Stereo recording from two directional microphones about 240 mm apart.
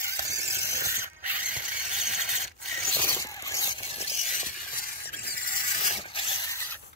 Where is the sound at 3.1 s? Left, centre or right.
Centre.